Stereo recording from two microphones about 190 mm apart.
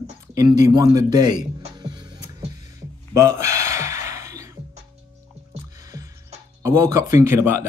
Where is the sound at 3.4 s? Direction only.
15° right (ahead or behind).